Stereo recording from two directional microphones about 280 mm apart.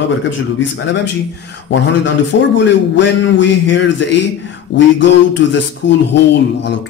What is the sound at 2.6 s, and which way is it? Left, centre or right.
Speech, left.